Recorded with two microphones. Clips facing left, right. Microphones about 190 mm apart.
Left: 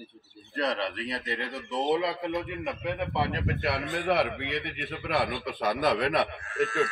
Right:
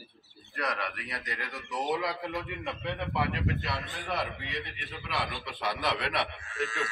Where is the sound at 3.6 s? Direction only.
60° left (ahead or behind).